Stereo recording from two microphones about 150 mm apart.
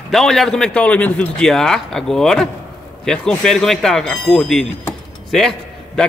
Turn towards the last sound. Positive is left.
turn(degrees=0)  # may be behind; listen again after turning